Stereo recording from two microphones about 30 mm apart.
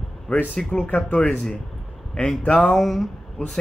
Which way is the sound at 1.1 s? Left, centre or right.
Left.